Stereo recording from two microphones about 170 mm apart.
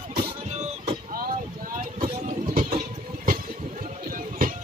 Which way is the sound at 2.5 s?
55° right (ahead or behind).